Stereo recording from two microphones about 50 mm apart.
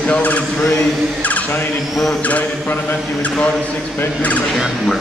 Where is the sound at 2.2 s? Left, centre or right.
Left.